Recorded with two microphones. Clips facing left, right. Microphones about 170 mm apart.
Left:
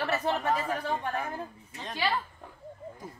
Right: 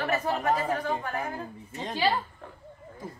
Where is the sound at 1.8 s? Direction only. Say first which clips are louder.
Right 4 dB; 30° right (ahead or behind).